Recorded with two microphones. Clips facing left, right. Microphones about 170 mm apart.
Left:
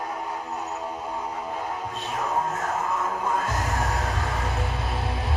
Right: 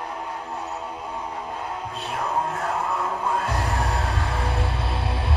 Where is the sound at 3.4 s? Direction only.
30° right (ahead or behind).